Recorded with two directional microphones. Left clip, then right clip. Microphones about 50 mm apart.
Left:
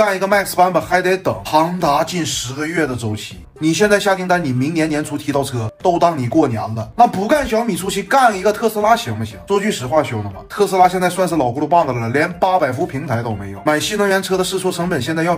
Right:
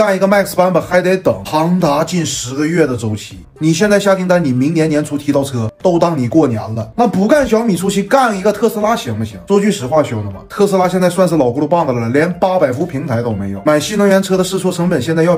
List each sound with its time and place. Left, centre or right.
0.0 s speech: right
3.7 s speech: right
7.3 s speech: right
7.9 s speech: right
9.5 s speech: right
13.7 s speech: right